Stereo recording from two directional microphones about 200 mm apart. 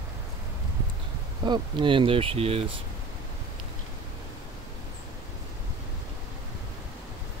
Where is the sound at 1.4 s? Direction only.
20° right (ahead or behind).